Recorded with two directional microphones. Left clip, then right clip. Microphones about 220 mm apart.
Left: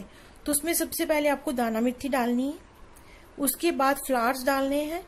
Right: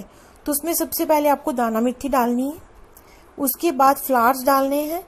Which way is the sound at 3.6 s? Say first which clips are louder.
Right 8 dB; 10° right (ahead or behind).